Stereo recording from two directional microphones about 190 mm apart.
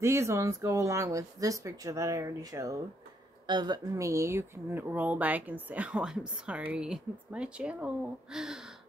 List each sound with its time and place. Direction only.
0.0 s speech: 15° right (ahead or behind)